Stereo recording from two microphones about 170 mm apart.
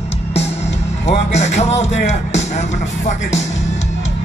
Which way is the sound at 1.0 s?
40° left (ahead or behind).